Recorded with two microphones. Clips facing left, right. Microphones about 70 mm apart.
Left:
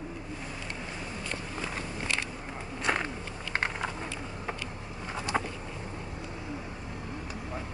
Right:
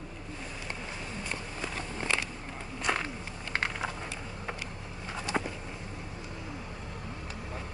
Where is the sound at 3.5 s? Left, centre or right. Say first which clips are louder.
Left 1 dB; left.